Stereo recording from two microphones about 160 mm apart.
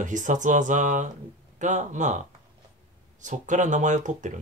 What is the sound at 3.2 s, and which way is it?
Speech, 50° right (ahead or behind).